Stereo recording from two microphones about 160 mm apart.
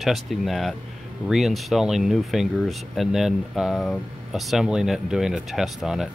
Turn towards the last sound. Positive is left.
turn(degrees=-5)  # may be behind; listen again after turning